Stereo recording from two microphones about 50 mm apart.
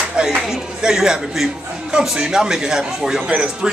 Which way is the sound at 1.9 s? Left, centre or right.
Centre.